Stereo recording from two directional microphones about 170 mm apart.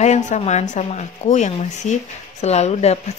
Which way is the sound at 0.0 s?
45° left (ahead or behind).